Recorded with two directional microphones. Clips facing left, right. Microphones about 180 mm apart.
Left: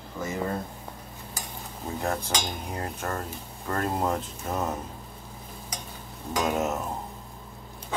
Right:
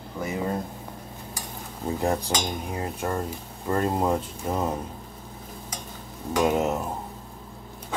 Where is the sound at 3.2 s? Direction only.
25° right (ahead or behind).